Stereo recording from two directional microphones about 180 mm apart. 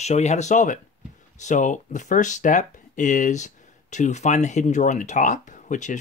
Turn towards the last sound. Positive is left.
turn(degrees=45)  # may be behind; listen again after turning